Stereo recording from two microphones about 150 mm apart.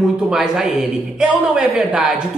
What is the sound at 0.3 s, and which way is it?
A man's voice, 5° right (ahead or behind).